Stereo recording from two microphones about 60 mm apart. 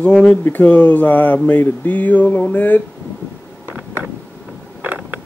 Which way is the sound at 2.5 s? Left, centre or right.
Left.